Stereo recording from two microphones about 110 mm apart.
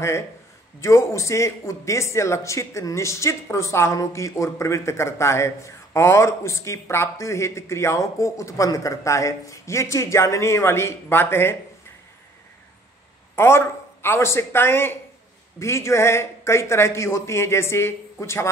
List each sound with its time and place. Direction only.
0.7 s a man's voice: 25° left (ahead or behind)
13.4 s a man's voice: 20° left (ahead or behind)